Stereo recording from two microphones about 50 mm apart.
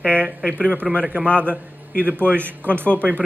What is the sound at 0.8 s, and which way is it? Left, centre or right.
Speech, centre.